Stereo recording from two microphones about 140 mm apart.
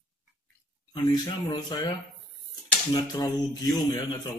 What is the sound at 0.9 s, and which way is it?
Speech, 30° left (ahead or behind).